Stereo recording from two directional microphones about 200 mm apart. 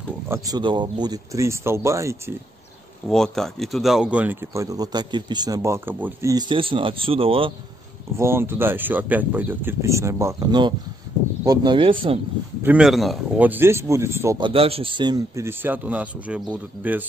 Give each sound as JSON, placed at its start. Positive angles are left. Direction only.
{"t": 0.3, "sound": "speech", "side_deg": -20}
{"t": 3.1, "sound": "speech", "side_deg": 0}
{"t": 6.3, "sound": "speech", "side_deg": -25}
{"t": 8.2, "sound": "speech", "side_deg": -10}
{"t": 12.6, "sound": "speech", "side_deg": -5}
{"t": 14.5, "sound": "speech", "side_deg": -30}